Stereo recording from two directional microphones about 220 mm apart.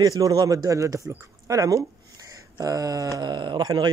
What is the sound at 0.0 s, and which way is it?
Speech, 15° right (ahead or behind).